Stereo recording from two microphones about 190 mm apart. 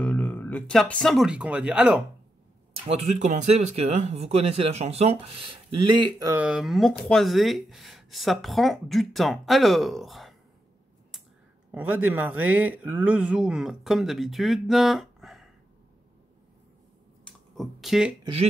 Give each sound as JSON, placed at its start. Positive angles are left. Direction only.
{"t": 0.0, "sound": "speech", "side_deg": 10}
{"t": 2.9, "sound": "speech", "side_deg": -35}
{"t": 6.3, "sound": "speech", "side_deg": -5}
{"t": 11.7, "sound": "speech", "side_deg": -10}
{"t": 17.2, "sound": "a sound", "side_deg": 0}
{"t": 18.2, "sound": "speech", "side_deg": -30}